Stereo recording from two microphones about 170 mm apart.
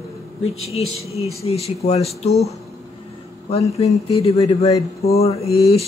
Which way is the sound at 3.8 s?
35° left (ahead or behind).